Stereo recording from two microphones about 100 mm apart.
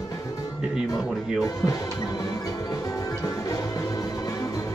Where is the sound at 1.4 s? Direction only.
35° left (ahead or behind).